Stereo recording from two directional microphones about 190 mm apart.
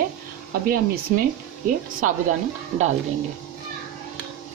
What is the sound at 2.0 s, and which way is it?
Speech, 40° right (ahead or behind).